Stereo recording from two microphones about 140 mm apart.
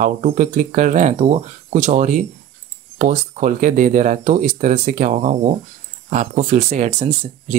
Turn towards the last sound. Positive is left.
turn(degrees=-50)  # may be behind; listen again after turning